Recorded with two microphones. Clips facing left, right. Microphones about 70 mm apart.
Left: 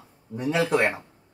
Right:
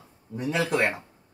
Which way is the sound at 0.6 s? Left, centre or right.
Centre.